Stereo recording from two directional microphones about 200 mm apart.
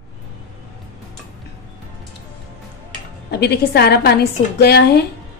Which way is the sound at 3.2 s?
55° left (ahead or behind).